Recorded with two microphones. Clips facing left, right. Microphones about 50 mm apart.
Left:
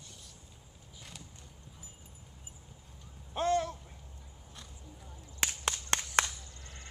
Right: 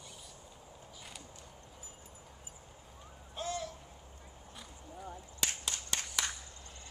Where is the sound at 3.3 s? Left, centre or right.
Left.